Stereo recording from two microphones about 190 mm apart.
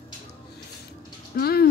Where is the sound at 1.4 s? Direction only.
55° left (ahead or behind).